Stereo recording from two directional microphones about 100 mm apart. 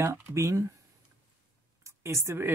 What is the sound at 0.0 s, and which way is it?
Speech, 30° right (ahead or behind).